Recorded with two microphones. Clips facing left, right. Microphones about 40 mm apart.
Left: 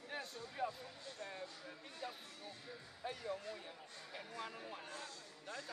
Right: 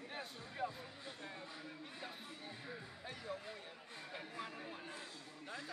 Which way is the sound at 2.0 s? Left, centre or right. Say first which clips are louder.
Left 4 dB; right.